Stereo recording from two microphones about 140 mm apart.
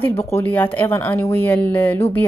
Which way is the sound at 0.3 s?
15° left (ahead or behind).